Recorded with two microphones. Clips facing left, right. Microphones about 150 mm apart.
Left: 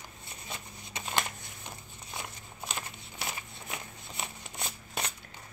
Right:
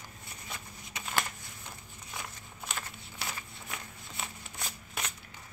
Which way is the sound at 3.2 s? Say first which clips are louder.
Left 2 dB; 20° left (ahead or behind).